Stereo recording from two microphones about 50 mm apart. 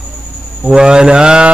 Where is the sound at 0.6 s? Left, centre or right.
Centre.